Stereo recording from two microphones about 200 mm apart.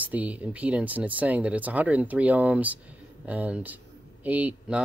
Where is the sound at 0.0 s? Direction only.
5° right (ahead or behind).